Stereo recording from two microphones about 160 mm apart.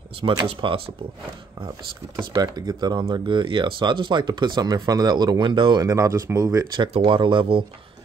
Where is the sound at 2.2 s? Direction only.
25° right (ahead or behind).